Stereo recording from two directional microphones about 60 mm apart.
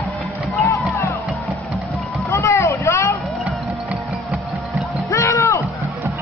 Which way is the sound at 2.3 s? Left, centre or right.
Left.